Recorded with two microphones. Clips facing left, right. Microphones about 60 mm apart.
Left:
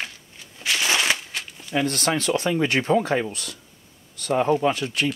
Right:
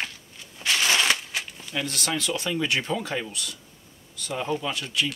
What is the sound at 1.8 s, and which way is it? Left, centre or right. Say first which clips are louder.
Speech: left 5 dB; left.